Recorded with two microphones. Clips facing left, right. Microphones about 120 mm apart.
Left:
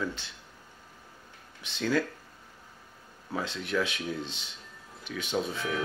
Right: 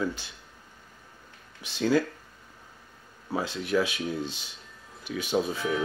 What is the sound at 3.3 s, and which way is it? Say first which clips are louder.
Speech: right 4 dB; 5° right (ahead or behind).